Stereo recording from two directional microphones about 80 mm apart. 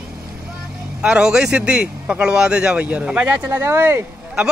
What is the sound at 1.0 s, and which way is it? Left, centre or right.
Speech, centre.